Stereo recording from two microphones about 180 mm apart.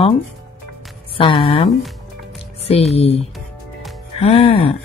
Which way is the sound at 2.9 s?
35° left (ahead or behind).